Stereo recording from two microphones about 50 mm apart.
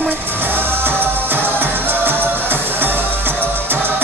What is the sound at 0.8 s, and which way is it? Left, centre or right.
Music, right.